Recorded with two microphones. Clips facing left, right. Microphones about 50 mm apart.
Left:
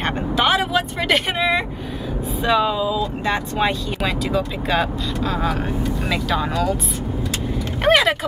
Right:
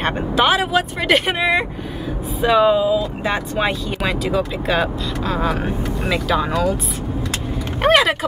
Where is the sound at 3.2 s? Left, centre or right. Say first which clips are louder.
Left 1 dB; centre.